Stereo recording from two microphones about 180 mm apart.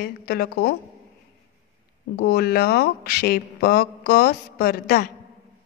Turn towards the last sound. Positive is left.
turn(degrees=60)  # may be behind; listen again after turning